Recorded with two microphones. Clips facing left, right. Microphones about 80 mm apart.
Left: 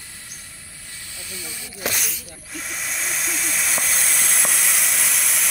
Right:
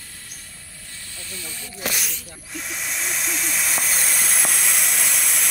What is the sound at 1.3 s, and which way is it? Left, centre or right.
Speech, centre.